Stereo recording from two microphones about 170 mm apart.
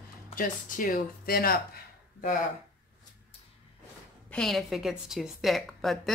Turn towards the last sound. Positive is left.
turn(degrees=0)  # may be behind; listen again after turning